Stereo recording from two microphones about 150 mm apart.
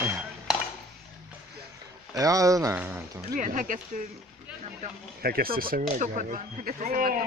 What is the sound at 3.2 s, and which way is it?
Speech, 65° right (ahead or behind).